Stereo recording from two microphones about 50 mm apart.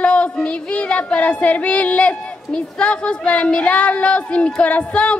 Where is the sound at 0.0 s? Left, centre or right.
Left.